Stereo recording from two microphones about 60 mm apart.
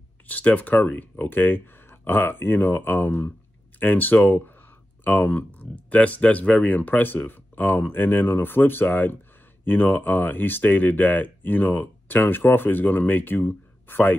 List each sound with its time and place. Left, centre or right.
0.3 s speech: left